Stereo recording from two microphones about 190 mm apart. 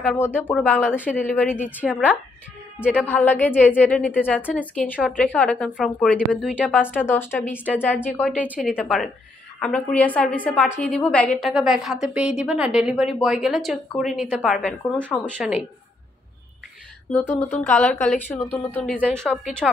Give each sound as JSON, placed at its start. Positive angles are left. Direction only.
{"t": 0.2, "sound": "a woman's voice", "side_deg": 10}
{"t": 1.6, "sound": "a woman's voice", "side_deg": -5}
{"t": 3.1, "sound": "a woman's voice", "side_deg": 10}
{"t": 7.0, "sound": "a woman's voice", "side_deg": 10}
{"t": 7.5, "sound": "a woman's voice", "side_deg": -5}
{"t": 7.8, "sound": "a woman's voice", "side_deg": 10}
{"t": 15.3, "sound": "a woman's voice", "side_deg": -5}
{"t": 17.1, "sound": "a woman's voice", "side_deg": 10}